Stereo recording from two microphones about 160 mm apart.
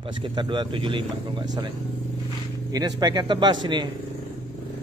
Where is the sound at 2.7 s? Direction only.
25° right (ahead or behind).